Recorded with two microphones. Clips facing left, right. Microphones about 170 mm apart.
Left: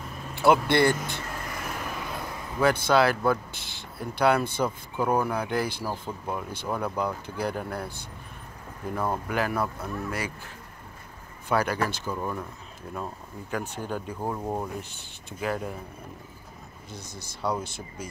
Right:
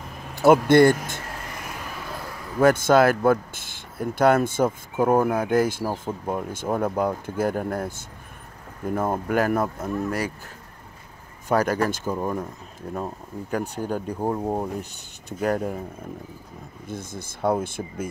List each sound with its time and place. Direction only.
0.3 s speech: 45° right (ahead or behind)
2.6 s speech: 45° right (ahead or behind)
9.3 s speech: 45° right (ahead or behind)
11.4 s speech: 45° right (ahead or behind)
14.1 s speech: 20° right (ahead or behind)
14.8 s speech: 45° right (ahead or behind)
16.8 s speech: 50° right (ahead or behind)